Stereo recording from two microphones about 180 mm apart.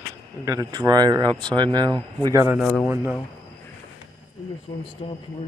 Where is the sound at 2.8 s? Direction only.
15° right (ahead or behind).